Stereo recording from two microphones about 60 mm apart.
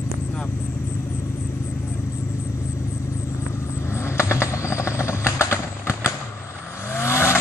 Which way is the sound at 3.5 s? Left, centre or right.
Left.